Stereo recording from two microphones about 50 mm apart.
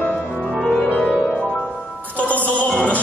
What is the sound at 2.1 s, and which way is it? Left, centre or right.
Music, left.